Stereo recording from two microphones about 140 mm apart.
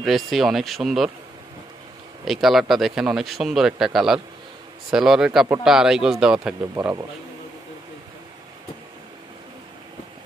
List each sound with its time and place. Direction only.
0.0 s a man's voice: centre (ahead or behind)
2.2 s a man's voice: centre (ahead or behind)
6.6 s speech: 20° right (ahead or behind)